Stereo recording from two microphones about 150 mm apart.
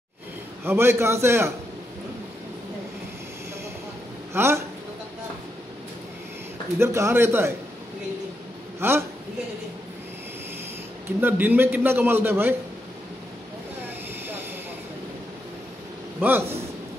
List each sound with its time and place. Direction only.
0.7 s a man's voice: 15° right (ahead or behind)
4.3 s speech: 15° right (ahead or behind)
6.8 s a man's voice: 20° right (ahead or behind)
8.7 s a man's voice: 15° right (ahead or behind)
11.1 s a man's voice: 15° right (ahead or behind)
16.2 s a man's voice: 15° right (ahead or behind)